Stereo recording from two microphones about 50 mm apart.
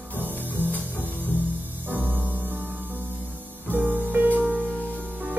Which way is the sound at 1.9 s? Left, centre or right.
Right.